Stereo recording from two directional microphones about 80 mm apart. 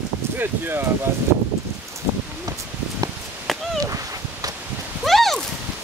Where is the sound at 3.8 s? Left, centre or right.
Right.